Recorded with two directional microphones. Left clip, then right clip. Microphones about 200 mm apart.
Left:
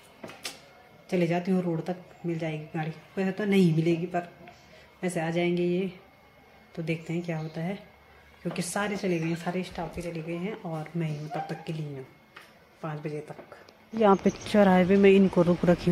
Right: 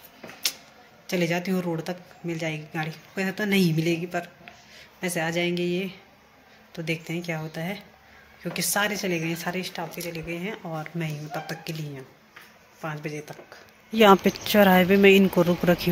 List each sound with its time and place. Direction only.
1.0 s speech: centre (ahead or behind)
13.9 s speech: 15° right (ahead or behind)
14.2 s speech: 5° left (ahead or behind)